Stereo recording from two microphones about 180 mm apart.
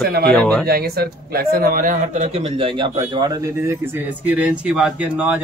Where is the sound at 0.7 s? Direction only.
60° right (ahead or behind).